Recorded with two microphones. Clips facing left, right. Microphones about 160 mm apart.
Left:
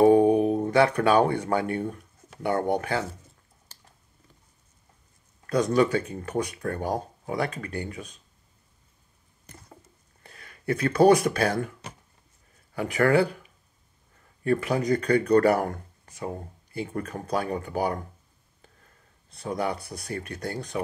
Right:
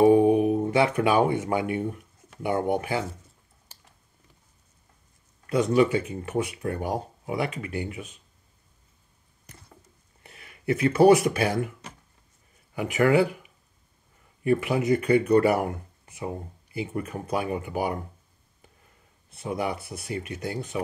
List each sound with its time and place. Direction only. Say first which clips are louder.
0.0 s speech: even; 15° right (ahead or behind)
5.6 s speech: right 1 dB; 15° right (ahead or behind)
10.2 s speech: right 2 dB; 15° right (ahead or behind)
12.7 s speech: right 1 dB; 15° right (ahead or behind)
19.3 s speech: even; 20° right (ahead or behind)